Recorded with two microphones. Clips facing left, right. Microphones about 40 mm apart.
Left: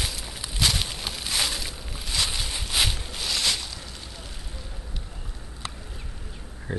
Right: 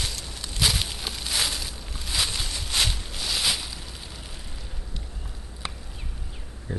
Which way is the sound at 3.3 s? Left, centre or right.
Centre.